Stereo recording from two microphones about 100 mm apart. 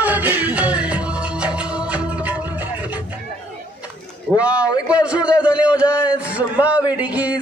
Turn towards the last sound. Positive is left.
turn(degrees=-15)  # may be behind; listen again after turning